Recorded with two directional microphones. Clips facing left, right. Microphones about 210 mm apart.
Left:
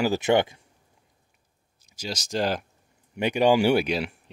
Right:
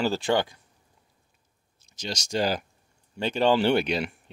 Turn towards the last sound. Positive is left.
turn(degrees=0)  # may be behind; listen again after turning